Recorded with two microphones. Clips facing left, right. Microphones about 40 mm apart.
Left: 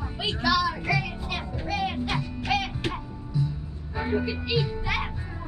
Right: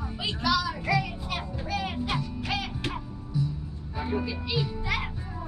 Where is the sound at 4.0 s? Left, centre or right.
Left.